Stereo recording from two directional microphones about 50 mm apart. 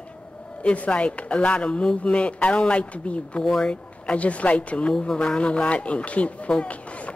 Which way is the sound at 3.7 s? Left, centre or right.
Left.